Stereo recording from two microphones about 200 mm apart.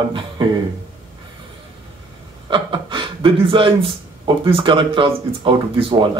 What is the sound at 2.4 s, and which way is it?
Speech, 25° right (ahead or behind).